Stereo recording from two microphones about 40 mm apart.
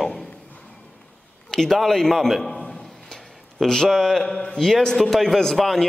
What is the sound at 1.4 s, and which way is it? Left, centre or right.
A man's voice, centre.